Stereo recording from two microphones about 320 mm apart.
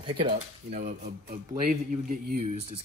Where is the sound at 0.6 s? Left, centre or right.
Right.